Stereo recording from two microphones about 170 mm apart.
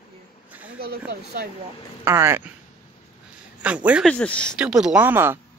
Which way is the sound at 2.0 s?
15° right (ahead or behind).